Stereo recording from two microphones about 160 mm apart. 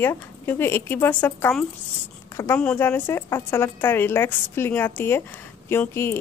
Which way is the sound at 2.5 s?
10° left (ahead or behind).